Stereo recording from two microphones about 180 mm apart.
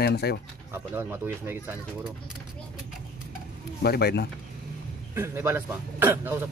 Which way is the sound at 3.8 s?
60° left (ahead or behind).